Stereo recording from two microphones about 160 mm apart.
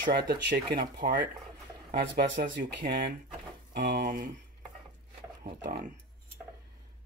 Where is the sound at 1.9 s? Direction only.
90° right; by 4.3 s 60° right (ahead or behind).